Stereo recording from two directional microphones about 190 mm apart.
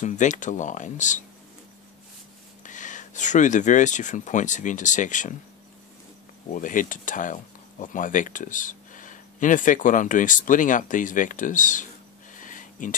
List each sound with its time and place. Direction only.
0.0 s speech: 40° left (ahead or behind)
2.6 s speech: 40° left (ahead or behind)
6.5 s speech: 45° left (ahead or behind)
12.4 s a sound: 45° left (ahead or behind)